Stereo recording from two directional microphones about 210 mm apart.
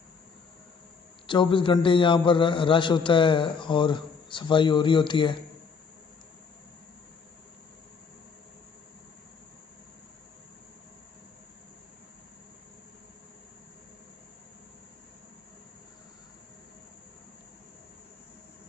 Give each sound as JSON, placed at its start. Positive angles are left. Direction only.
{"t": 1.2, "sound": "a man's voice", "side_deg": 25}